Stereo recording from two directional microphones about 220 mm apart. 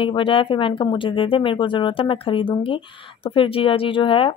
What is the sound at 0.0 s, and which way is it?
Speech, 25° left (ahead or behind).